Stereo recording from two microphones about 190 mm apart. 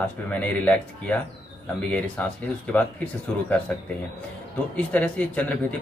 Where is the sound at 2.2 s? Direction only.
5° left (ahead or behind).